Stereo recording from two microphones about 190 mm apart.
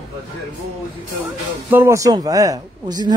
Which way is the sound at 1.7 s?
10° right (ahead or behind).